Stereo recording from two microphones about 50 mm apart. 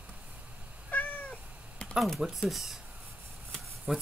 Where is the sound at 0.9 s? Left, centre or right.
Left.